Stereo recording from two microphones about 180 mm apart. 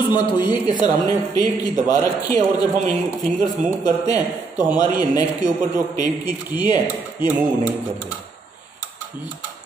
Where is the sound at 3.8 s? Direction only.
20° left (ahead or behind).